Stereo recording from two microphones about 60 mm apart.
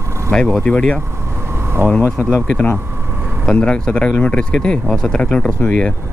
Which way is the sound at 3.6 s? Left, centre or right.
Centre.